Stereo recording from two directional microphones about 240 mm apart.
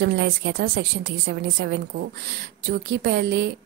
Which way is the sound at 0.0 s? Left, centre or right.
Right.